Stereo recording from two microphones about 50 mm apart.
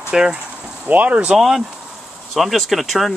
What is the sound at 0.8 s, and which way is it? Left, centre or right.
Speech, right.